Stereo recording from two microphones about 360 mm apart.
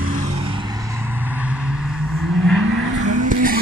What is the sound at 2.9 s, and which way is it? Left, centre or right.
Vehicle, right.